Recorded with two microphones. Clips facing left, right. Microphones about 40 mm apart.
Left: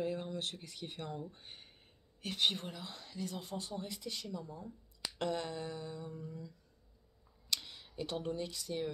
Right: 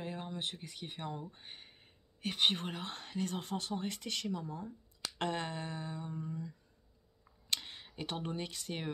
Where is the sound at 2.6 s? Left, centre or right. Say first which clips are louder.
Right 4 dB; right.